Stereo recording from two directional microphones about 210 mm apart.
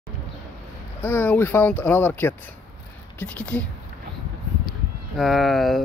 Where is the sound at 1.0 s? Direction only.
10° left (ahead or behind).